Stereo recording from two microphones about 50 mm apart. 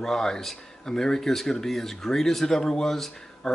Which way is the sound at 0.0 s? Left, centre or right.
Centre.